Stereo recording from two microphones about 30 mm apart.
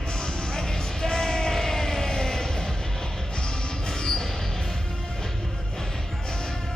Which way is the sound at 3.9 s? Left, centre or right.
Centre.